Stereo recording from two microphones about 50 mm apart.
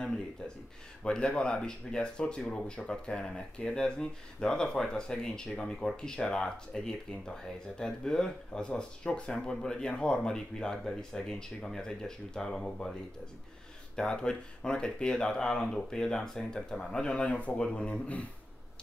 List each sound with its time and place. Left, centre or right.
1.0 s speech: centre
13.9 s speech: centre